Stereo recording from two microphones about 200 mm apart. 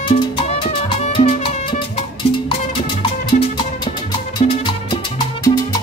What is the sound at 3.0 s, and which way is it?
Music, 25° left (ahead or behind).